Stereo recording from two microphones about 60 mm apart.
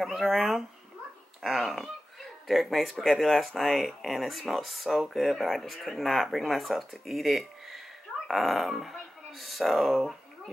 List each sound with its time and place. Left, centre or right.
0.0 s speech: centre